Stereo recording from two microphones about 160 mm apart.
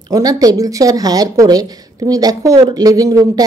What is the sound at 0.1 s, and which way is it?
Speech, 25° right (ahead or behind).